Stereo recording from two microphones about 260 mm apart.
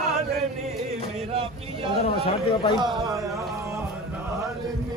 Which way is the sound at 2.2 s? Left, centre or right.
Centre.